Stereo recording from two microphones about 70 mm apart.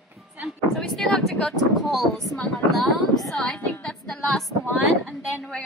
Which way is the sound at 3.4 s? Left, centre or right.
Centre.